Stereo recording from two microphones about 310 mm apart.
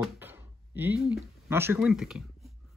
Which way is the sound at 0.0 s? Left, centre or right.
Centre.